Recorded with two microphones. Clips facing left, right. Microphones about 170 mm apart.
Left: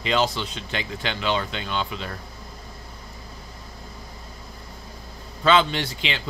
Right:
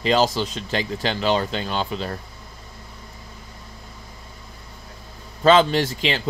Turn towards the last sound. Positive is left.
turn(degrees=-40)  # may be behind; listen again after turning